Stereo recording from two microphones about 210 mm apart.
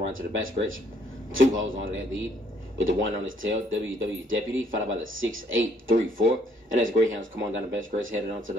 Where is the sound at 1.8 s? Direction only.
65° right (ahead or behind).